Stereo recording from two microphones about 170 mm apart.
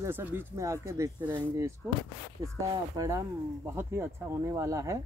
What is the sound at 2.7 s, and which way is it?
Speech, 20° right (ahead or behind).